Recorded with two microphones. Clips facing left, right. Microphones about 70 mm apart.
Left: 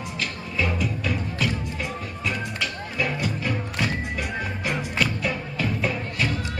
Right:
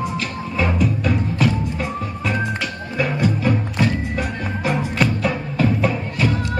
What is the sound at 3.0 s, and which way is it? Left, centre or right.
Music, right.